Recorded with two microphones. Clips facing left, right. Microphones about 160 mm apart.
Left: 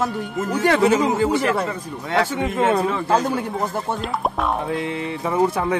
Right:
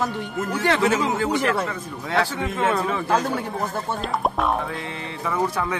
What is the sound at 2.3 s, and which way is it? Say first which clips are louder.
Speech: left 4 dB; 20° left (ahead or behind).